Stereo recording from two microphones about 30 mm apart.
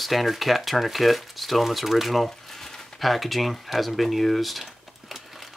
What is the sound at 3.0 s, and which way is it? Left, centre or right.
Speech, centre.